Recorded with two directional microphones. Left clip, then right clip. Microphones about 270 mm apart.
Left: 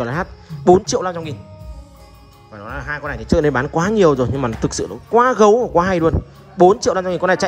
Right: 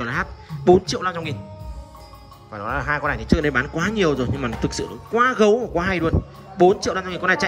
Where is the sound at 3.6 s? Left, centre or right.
Left.